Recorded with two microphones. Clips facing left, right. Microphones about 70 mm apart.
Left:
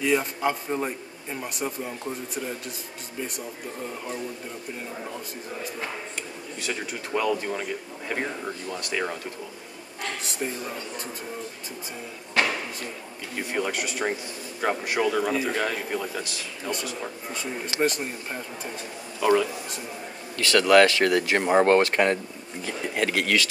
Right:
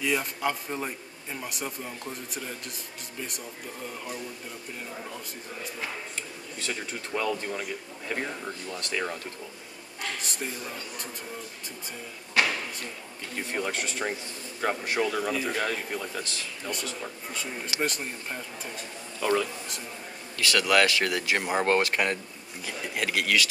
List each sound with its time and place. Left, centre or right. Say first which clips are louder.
0.0 s a man's voice: left 4 dB; centre
6.6 s speech: left 3 dB; centre
10.0 s speech: left 3 dB; centre
12.4 s a sound: left 1 dB; centre
13.6 s speech: left 3 dB; centre
17.7 s a man's voice: left 6 dB; centre
20.5 s speech: left 6 dB; left